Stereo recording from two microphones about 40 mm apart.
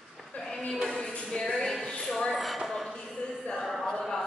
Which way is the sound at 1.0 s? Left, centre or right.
Left.